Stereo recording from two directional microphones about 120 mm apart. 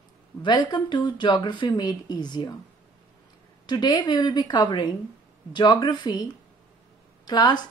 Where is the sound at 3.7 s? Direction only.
40° left (ahead or behind).